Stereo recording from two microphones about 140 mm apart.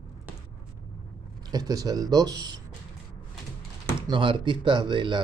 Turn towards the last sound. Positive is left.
turn(degrees=-35)  # may be behind; listen again after turning